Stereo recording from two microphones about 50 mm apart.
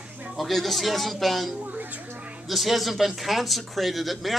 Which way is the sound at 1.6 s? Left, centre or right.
Right.